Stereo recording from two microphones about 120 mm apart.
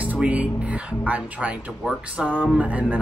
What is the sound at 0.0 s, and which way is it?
Music, 10° right (ahead or behind).